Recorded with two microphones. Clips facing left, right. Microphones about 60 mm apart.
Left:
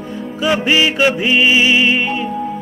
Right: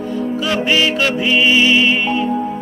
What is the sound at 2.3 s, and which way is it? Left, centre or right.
Music, centre.